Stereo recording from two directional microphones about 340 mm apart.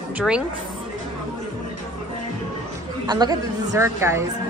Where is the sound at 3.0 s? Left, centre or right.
Centre.